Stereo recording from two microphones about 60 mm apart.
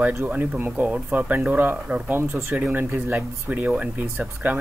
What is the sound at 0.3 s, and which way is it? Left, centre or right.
Speech, right.